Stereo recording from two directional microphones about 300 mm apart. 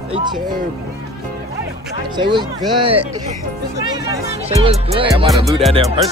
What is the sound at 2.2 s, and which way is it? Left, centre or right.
Music, centre.